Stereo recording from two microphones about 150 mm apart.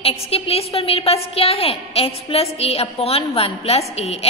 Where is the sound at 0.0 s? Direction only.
40° left (ahead or behind).